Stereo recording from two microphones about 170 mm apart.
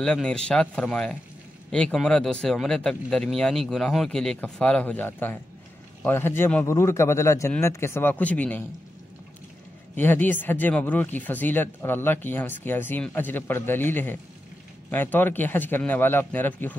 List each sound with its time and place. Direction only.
0.0 s speech: 5° left (ahead or behind)
9.9 s speech: 10° left (ahead or behind)